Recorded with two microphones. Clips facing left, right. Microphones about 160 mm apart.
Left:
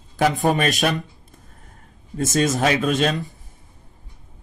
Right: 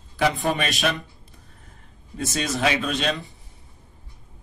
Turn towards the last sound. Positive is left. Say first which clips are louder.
# left 5 dB
turn(degrees=45)  # may be behind; listen again after turning